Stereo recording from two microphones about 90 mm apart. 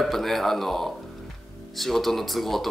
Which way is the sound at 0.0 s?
5° left (ahead or behind).